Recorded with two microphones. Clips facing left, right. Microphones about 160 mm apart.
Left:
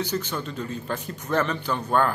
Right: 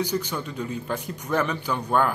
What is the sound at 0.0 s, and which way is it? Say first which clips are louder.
Speech: right 1 dB; 10° right (ahead or behind).